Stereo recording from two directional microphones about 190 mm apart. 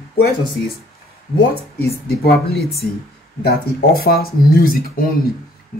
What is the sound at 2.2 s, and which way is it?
A woman's voice, 55° left (ahead or behind).